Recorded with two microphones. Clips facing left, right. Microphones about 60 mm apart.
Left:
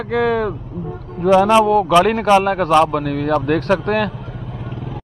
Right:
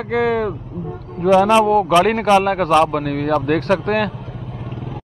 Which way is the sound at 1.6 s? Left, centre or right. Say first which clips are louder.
Left 1 dB; right.